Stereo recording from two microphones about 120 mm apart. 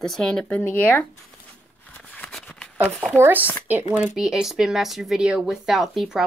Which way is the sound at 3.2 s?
15° right (ahead or behind).